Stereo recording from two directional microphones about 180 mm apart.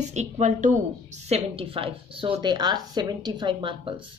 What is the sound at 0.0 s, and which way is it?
A woman's voice, 40° right (ahead or behind).